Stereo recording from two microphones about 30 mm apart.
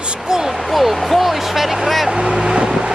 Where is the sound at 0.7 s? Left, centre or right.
Centre.